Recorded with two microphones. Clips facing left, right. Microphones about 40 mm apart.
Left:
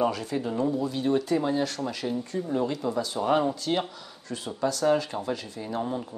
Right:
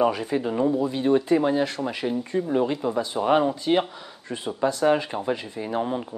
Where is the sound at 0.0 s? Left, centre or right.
Right.